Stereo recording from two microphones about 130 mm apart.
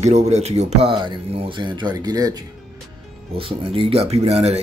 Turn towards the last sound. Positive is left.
turn(degrees=-55)  # may be behind; listen again after turning